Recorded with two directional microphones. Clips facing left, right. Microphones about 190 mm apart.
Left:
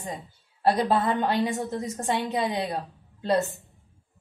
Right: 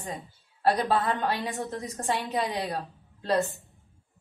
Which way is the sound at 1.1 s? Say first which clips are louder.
Left 4 dB; 20° left (ahead or behind).